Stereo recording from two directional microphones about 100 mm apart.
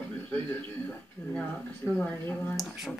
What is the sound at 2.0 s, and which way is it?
Speech, 15° left (ahead or behind).